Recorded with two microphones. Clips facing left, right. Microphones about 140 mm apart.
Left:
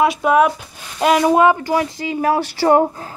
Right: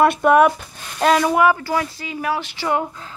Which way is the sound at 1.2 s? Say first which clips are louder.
Left 3 dB; 25° left (ahead or behind).